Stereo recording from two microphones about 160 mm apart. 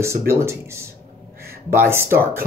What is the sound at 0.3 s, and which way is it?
Speech, 15° right (ahead or behind).